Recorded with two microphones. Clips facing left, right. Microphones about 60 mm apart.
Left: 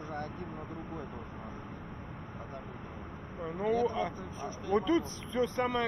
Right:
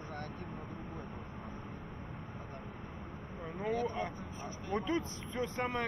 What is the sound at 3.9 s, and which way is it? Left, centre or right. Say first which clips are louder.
Speech: left 4 dB; left.